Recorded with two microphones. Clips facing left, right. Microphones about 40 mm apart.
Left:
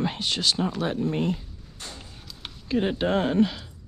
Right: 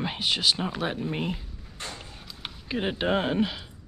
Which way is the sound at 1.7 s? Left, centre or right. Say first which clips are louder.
Right 3 dB; right.